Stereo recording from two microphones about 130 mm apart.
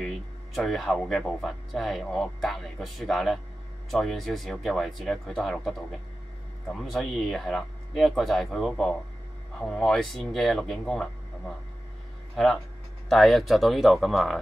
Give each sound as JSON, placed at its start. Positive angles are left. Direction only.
{"t": 0.6, "sound": "speech", "side_deg": 0}
{"t": 13.1, "sound": "speech", "side_deg": 0}